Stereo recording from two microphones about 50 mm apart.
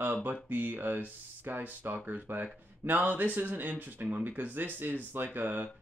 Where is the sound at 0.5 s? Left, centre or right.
Right.